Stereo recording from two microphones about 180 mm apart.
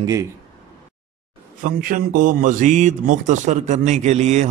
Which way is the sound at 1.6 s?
50° right (ahead or behind).